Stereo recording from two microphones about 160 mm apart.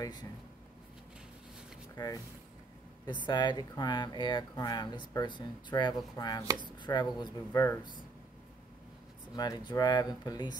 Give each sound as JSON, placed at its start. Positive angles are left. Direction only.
{"t": 2.0, "sound": "speech", "side_deg": 25}
{"t": 3.3, "sound": "speech", "side_deg": 25}
{"t": 6.4, "sound": "speech", "side_deg": -25}
{"t": 6.8, "sound": "speech", "side_deg": 25}
{"t": 9.3, "sound": "speech", "side_deg": 25}